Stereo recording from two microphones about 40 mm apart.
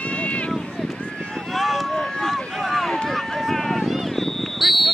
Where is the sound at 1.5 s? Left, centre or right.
Centre.